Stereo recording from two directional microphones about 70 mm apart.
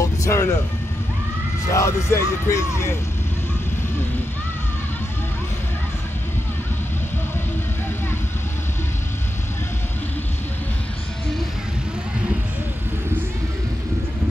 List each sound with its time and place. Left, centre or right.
0.0 s music: left
1.7 s speech: left